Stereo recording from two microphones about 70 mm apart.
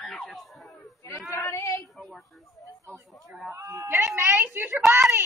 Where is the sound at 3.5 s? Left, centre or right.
Right.